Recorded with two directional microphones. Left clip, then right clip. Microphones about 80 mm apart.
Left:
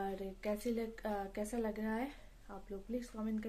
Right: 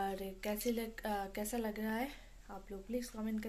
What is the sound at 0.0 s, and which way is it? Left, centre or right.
Speech, centre.